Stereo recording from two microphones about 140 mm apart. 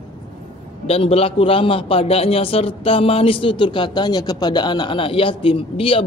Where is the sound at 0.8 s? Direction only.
45° left (ahead or behind).